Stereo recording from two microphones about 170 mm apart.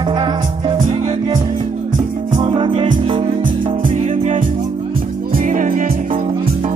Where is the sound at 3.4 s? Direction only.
55° right (ahead or behind).